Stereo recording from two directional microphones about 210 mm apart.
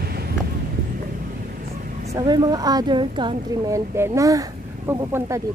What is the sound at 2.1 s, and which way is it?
Speech, 20° right (ahead or behind).